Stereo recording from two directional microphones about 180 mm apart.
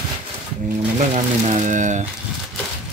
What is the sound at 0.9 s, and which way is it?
Speech, 40° right (ahead or behind).